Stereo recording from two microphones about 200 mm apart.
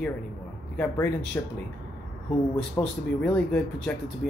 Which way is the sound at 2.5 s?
5° left (ahead or behind).